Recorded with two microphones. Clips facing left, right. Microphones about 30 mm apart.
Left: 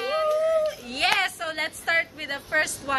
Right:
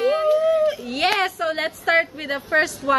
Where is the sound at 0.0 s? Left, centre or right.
Centre.